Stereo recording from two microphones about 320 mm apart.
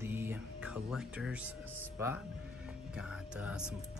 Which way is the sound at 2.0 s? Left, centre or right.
Centre.